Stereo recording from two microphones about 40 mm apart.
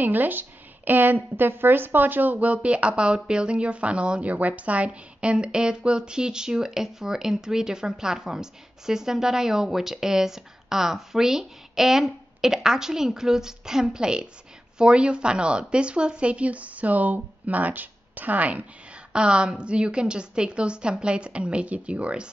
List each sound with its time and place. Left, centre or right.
0.0 s a woman's voice: right
19.1 s a woman's voice: right